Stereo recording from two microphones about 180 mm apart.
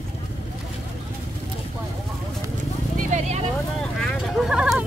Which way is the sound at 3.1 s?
45° right (ahead or behind).